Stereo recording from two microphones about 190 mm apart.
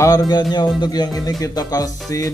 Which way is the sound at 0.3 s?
25° left (ahead or behind).